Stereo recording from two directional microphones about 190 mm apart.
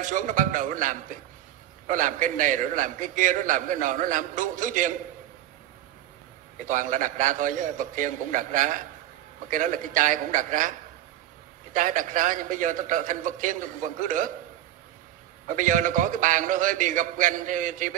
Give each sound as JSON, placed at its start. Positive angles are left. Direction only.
{"t": 0.0, "sound": "a man's voice", "side_deg": -45}
{"t": 6.6, "sound": "a man's voice", "side_deg": -45}
{"t": 11.7, "sound": "a man's voice", "side_deg": -45}
{"t": 15.4, "sound": "a man's voice", "side_deg": -45}